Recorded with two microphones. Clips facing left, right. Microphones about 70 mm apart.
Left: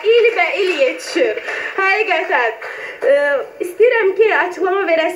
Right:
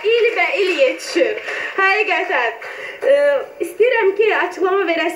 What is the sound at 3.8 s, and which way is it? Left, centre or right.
Speech, left.